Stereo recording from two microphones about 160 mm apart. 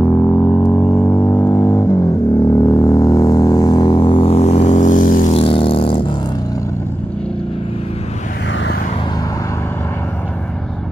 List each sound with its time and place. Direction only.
0.0 s music: 15° left (ahead or behind); by 5.3 s 55° left (ahead or behind)
5.3 s vehicle: 35° left (ahead or behind)